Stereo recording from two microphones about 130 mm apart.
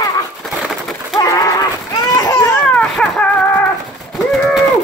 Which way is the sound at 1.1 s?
30° left (ahead or behind).